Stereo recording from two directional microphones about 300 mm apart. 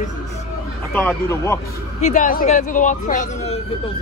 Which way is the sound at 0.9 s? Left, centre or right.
Centre.